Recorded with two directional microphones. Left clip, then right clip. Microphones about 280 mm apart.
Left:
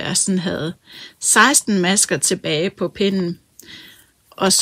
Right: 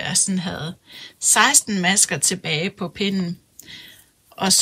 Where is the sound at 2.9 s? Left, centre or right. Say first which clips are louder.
Left 5 dB; centre.